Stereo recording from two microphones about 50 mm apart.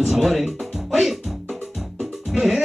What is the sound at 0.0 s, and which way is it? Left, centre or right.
Music, centre.